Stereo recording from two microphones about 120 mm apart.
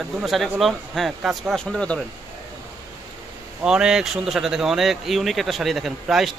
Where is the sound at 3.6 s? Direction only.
5° right (ahead or behind).